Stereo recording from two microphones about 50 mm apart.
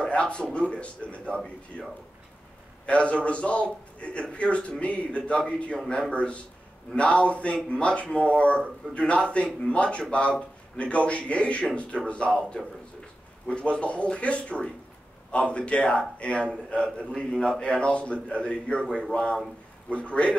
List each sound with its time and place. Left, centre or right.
0.0 s a man's voice: left